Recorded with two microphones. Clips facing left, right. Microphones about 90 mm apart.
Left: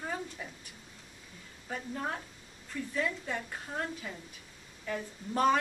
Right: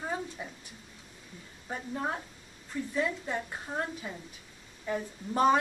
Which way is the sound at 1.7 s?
15° right (ahead or behind).